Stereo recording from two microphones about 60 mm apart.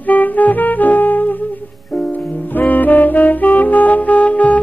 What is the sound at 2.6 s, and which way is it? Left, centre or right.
Music, left.